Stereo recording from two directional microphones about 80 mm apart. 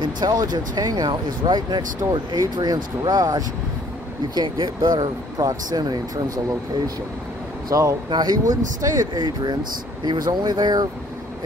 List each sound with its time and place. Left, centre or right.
0.0 s speech: right
2.0 s speech: right
7.7 s speech: right
8.1 s speech: right